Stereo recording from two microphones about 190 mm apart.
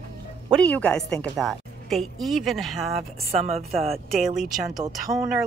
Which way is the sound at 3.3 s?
35° right (ahead or behind).